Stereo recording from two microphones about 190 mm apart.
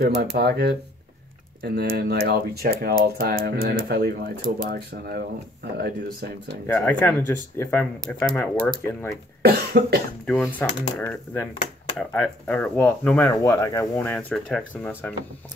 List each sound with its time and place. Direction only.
0.0 s speech: 60° right (ahead or behind)
6.7 s speech: 10° left (ahead or behind)
9.4 s speech: 55° right (ahead or behind)
10.2 s speech: 5° left (ahead or behind)
13.3 s speech: 15° left (ahead or behind)